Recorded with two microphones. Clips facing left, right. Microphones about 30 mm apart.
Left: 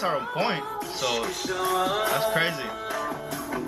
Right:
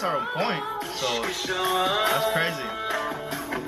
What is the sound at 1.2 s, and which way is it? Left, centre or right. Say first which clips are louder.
Music: right 1 dB; right.